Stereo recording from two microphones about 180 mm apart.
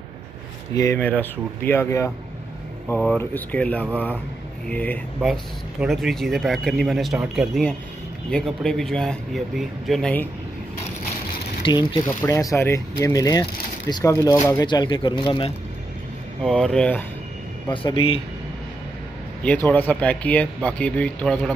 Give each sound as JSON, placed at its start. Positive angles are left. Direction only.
{"t": 0.7, "sound": "speech", "side_deg": 20}
{"t": 3.2, "sound": "speech", "side_deg": 10}
{"t": 11.6, "sound": "speech", "side_deg": 25}
{"t": 12.1, "sound": "speech", "side_deg": 15}
{"t": 16.4, "sound": "speech", "side_deg": 5}
{"t": 17.6, "sound": "speech", "side_deg": 30}
{"t": 19.4, "sound": "speech", "side_deg": 10}